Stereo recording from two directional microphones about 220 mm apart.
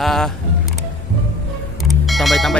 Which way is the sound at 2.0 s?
Centre (ahead or behind).